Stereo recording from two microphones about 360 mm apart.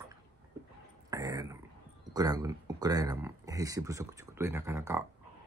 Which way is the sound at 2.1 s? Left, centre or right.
Centre.